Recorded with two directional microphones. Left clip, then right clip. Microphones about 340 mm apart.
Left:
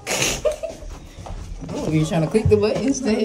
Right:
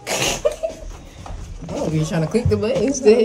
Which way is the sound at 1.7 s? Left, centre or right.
Centre.